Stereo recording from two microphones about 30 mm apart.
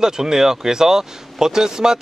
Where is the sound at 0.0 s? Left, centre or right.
Right.